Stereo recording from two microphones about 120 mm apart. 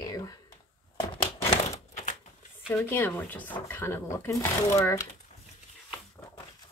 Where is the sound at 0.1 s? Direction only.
30° left (ahead or behind).